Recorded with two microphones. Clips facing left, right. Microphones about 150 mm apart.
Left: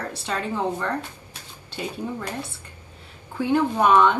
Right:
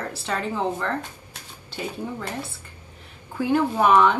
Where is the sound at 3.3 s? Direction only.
10° right (ahead or behind).